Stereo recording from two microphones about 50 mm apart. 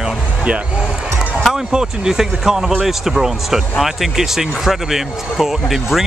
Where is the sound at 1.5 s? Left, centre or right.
Centre.